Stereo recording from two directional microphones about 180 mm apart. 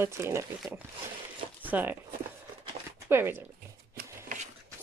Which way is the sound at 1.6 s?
10° right (ahead or behind).